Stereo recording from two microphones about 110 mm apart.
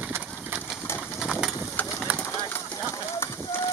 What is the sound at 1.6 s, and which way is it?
Bird, 25° left (ahead or behind).